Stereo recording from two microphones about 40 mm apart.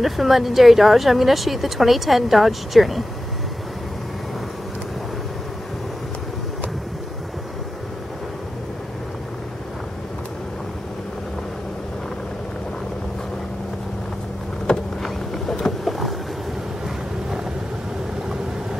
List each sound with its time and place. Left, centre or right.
0.0 s a woman's voice: centre
14.7 s vehicle: centre
15.3 s boat: centre
15.8 s boat: centre